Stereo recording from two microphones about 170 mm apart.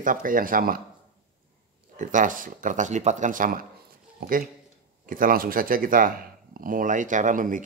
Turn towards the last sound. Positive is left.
turn(degrees=-50)  # may be behind; listen again after turning